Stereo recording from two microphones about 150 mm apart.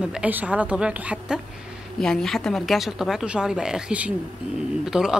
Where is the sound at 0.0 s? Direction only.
5° right (ahead or behind).